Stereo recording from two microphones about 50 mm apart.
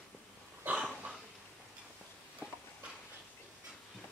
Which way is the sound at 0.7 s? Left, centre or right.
Right.